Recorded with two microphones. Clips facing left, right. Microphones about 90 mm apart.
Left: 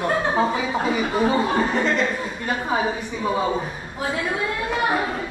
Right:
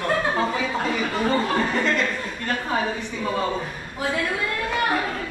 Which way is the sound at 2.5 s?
10° left (ahead or behind).